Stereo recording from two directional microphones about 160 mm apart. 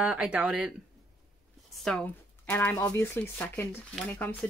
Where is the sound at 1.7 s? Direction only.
5° left (ahead or behind).